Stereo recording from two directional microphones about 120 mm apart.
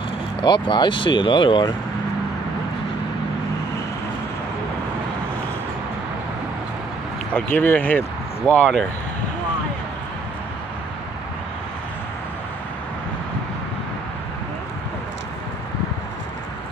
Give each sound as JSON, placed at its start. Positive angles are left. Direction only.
{"t": 0.4, "sound": "speech", "side_deg": 40}
{"t": 7.3, "sound": "speech", "side_deg": 15}